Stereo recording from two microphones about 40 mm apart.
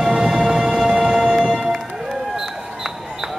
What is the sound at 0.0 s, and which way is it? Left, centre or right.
Music, centre.